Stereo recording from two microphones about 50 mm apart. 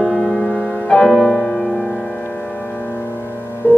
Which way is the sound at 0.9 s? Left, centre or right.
Centre.